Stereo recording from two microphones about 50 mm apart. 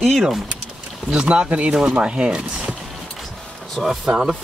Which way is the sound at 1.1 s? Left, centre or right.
Centre.